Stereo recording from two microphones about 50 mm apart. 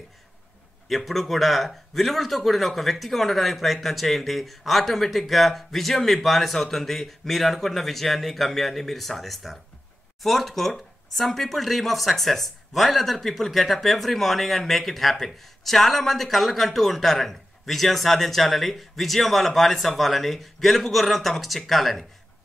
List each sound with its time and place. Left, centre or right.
0.8 s speech: centre